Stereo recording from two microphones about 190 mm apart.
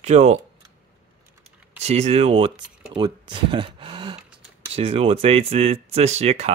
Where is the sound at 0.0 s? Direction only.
35° right (ahead or behind).